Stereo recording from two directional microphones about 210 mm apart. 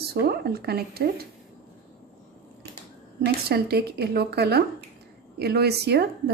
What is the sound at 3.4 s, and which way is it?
A woman's voice, 50° right (ahead or behind).